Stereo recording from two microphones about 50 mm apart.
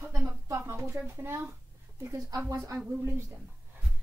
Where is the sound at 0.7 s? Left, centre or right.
Right.